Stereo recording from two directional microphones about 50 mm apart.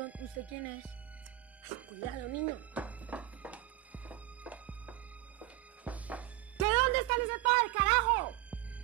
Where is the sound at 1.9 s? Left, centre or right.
Right.